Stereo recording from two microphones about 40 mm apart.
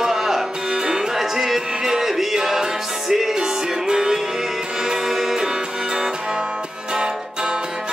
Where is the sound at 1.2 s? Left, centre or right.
Centre.